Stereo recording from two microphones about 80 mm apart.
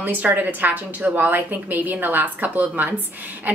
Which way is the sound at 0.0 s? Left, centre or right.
Right.